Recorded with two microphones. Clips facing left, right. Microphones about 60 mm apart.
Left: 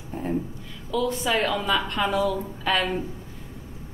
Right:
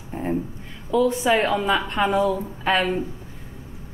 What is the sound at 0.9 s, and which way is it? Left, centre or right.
A woman's voice, right.